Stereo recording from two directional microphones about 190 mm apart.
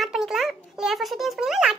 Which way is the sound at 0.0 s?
Centre (ahead or behind).